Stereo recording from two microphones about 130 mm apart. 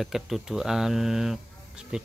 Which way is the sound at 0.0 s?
Centre (ahead or behind).